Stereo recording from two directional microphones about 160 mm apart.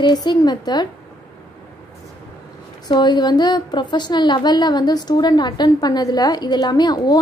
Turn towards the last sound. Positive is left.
turn(degrees=25)  # may be behind; listen again after turning